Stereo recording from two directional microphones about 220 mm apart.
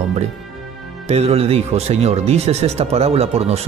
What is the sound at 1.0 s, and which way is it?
Speech, 30° right (ahead or behind).